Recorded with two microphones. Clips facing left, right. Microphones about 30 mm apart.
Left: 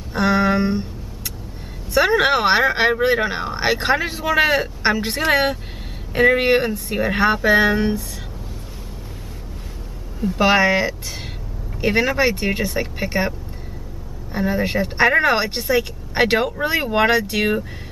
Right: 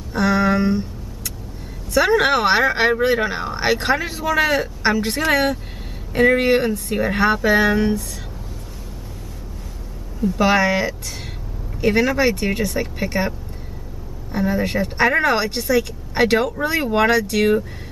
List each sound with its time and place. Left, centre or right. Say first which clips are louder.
0.1 s a sound: even; centre
2.0 s speech: even; centre
10.2 s speech: left 1 dB; centre
14.3 s speech: even; centre